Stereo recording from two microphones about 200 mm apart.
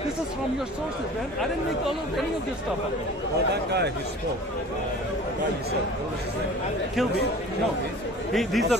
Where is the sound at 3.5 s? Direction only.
55° right (ahead or behind).